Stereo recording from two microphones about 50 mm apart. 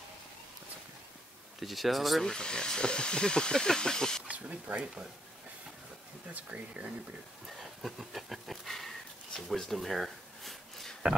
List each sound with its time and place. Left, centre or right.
1.6 s speech: centre
2.2 s speech: centre
4.3 s speech: right
6.3 s speech: right
7.4 s a sound: centre